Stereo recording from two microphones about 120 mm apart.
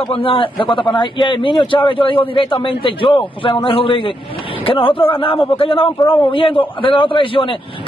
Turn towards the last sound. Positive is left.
turn(degrees=45)  # may be behind; listen again after turning